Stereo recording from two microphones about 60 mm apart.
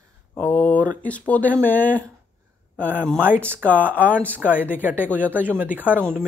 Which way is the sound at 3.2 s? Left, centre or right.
Right.